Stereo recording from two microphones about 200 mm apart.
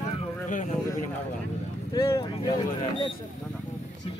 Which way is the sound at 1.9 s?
15° left (ahead or behind).